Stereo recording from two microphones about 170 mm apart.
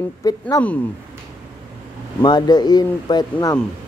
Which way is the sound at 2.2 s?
25° left (ahead or behind).